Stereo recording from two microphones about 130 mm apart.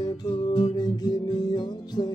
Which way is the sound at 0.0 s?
35° left (ahead or behind).